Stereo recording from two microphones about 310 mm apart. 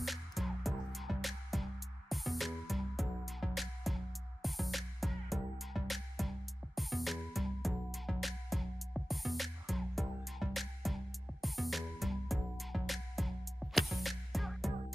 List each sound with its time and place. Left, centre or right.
0.0 s music: centre